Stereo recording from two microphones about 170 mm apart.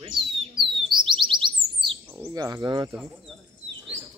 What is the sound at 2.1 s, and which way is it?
Speech, 20° right (ahead or behind).